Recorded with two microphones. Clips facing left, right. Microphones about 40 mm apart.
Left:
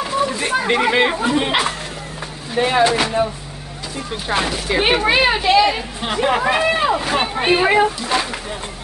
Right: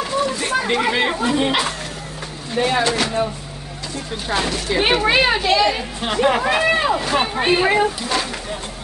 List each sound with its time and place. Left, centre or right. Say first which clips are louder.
0.0 s a sound: left 1 dB; centre
1.3 s speech: left 1 dB; centre
4.3 s speech: left 1 dB; centre